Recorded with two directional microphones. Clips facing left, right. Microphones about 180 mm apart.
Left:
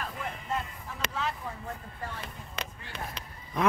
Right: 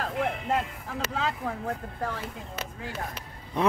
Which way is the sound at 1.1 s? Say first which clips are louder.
Right 5 dB; 90° right.